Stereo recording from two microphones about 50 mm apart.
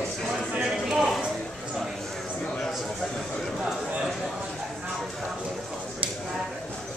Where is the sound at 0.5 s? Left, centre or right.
Centre.